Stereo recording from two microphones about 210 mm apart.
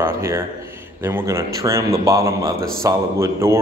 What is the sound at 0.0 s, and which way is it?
A man's voice, 10° right (ahead or behind).